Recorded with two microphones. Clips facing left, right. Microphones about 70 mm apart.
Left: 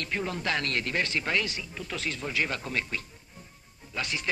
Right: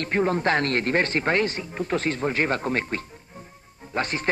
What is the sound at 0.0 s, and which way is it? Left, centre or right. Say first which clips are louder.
A man's voice: right 9 dB; right.